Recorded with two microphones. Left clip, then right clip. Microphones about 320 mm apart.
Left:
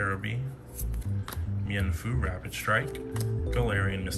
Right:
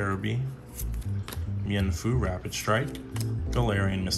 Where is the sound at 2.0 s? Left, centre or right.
Centre.